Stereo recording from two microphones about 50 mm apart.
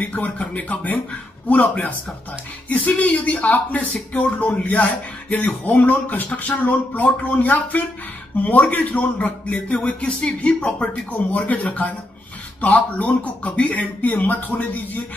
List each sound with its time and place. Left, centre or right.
0.0 s speech: left